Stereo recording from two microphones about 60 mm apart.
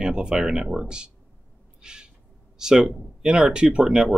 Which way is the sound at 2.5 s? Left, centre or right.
Centre.